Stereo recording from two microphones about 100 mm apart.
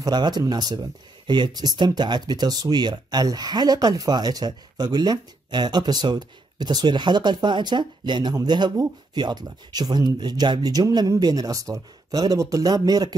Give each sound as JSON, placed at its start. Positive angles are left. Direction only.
{"t": 0.0, "sound": "speech", "side_deg": -45}